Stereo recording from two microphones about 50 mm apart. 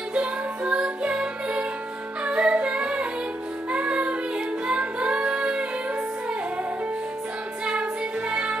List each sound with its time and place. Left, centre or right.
0.1 s music: right
7.6 s music: right